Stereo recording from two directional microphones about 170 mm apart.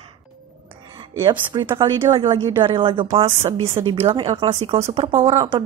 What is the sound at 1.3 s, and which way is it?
A woman's voice, 30° right (ahead or behind).